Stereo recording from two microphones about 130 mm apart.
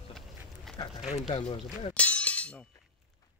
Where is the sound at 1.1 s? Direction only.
50° left (ahead or behind).